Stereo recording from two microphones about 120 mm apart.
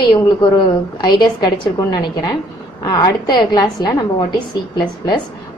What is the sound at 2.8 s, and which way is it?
A woman's voice, 35° left (ahead or behind).